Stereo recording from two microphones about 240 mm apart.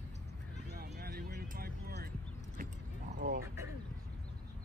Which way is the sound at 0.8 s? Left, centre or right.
Right.